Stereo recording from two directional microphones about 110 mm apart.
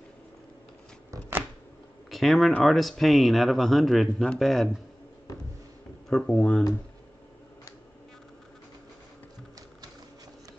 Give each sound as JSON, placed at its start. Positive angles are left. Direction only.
{"t": 2.0, "sound": "speech", "side_deg": 0}
{"t": 6.0, "sound": "speech", "side_deg": 5}